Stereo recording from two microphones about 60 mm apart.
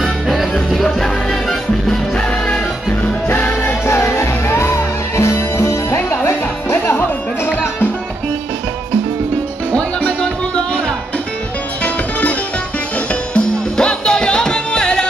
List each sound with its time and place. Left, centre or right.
0.0 s music: centre
2.4 s music: left
3.3 s music: left
5.9 s music: left
9.7 s music: left
11.8 s music: left